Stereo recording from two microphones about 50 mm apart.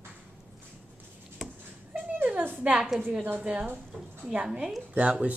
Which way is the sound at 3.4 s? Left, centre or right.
Right.